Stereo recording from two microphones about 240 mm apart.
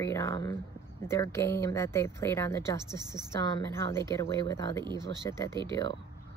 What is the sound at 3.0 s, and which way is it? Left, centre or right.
Speech, centre.